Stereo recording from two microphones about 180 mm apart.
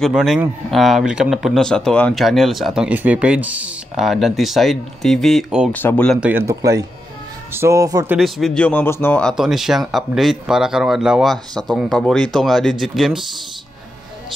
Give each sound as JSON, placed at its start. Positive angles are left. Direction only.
{"t": 0.0, "sound": "speech", "side_deg": 0}
{"t": 5.7, "sound": "speech", "side_deg": 10}
{"t": 6.2, "sound": "a man's voice", "side_deg": -15}
{"t": 8.2, "sound": "speech", "side_deg": 0}
{"t": 9.3, "sound": "speech", "side_deg": 0}